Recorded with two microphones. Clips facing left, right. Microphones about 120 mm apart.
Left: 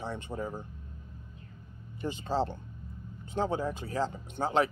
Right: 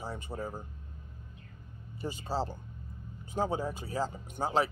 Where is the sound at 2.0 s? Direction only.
5° right (ahead or behind).